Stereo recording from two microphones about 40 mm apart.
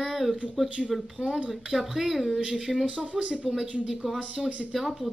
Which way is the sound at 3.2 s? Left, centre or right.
Right.